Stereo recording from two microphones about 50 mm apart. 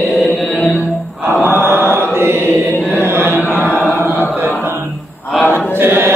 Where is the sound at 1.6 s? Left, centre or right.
Right.